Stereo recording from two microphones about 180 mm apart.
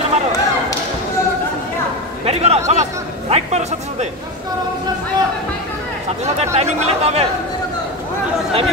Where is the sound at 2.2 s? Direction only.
35° right (ahead or behind).